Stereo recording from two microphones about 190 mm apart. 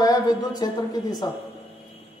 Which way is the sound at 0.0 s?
20° left (ahead or behind).